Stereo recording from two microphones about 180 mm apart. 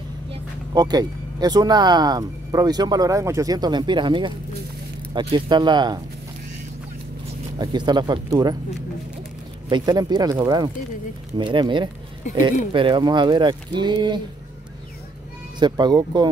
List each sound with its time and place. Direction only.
0.3 s speech: 20° right (ahead or behind)
7.5 s speech: 25° right (ahead or behind)
9.7 s speech: 25° right (ahead or behind)
15.6 s speech: 25° right (ahead or behind)